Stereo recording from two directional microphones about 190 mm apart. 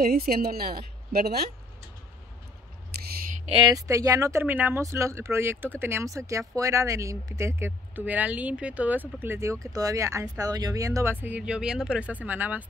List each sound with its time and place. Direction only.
0.0 s a woman's voice: 55° right (ahead or behind)
3.4 s speech: 25° right (ahead or behind); by 12.6 s 10° right (ahead or behind)